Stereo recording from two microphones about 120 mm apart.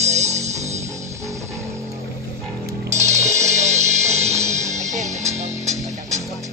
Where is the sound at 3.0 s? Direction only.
75° right (ahead or behind).